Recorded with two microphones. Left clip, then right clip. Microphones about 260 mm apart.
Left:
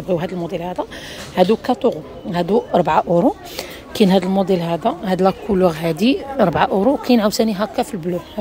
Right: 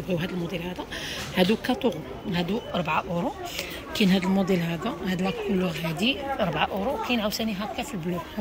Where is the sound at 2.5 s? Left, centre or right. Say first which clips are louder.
Left 13 dB; left.